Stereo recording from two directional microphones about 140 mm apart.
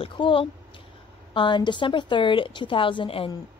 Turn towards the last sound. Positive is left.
turn(degrees=40)  # may be behind; listen again after turning